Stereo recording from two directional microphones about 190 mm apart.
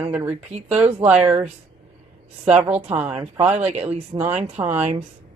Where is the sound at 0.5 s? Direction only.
35° right (ahead or behind).